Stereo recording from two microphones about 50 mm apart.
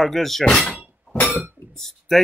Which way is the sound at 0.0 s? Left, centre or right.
Centre.